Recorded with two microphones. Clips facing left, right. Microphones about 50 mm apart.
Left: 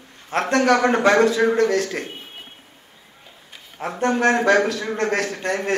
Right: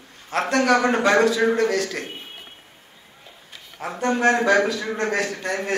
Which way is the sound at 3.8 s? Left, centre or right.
Left.